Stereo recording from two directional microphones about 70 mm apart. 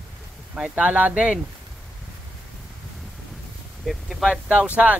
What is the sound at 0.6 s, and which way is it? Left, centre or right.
Speech, centre.